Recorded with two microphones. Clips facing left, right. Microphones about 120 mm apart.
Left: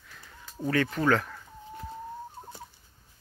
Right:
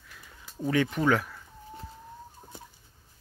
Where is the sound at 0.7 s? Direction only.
15° right (ahead or behind).